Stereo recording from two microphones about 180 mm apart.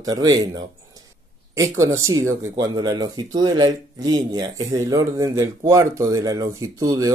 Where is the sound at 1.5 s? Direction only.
15° right (ahead or behind).